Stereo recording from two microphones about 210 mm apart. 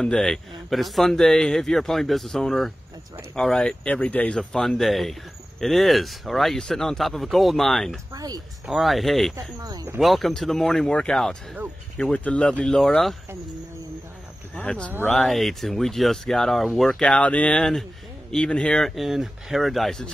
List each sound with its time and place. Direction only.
0.0 s a man's voice: centre (ahead or behind)
8.1 s speech: 15° right (ahead or behind)
8.6 s a man's voice: centre (ahead or behind)
9.6 s speech: 20° right (ahead or behind)
9.9 s a man's voice: centre (ahead or behind)
14.5 s a man's voice: 5° left (ahead or behind)
14.9 s a man's voice: 10° right (ahead or behind)